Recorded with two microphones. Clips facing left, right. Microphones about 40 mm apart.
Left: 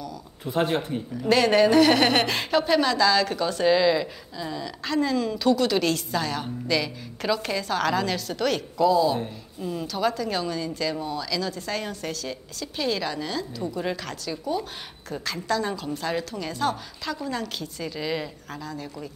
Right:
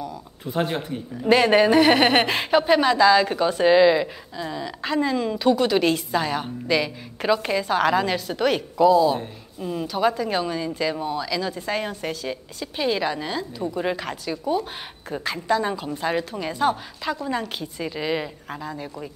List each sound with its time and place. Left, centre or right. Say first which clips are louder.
0.5 s speech: left 1 dB; centre
1.1 s a woman's voice: right 3 dB; right